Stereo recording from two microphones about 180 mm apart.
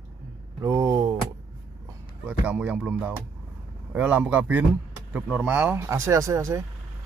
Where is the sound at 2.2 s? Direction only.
10° right (ahead or behind).